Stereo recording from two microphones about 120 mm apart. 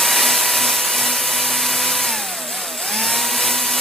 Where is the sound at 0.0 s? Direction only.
Centre (ahead or behind).